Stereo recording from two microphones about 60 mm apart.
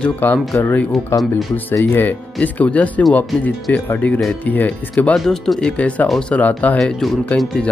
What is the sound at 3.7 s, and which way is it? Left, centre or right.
Speech, left.